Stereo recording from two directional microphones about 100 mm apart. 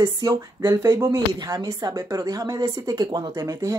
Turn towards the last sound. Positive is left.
turn(degrees=-35)  # may be behind; listen again after turning